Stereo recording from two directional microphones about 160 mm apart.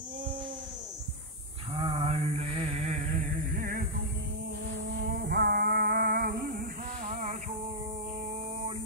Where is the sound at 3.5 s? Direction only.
55° right (ahead or behind).